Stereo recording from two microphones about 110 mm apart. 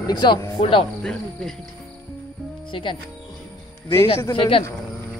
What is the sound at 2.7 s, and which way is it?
Speech, 50° left (ahead or behind).